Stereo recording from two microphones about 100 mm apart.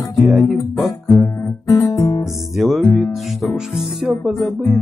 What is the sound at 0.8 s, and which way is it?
Guitar, 25° left (ahead or behind).